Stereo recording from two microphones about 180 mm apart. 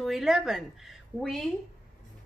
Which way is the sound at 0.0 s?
Centre (ahead or behind).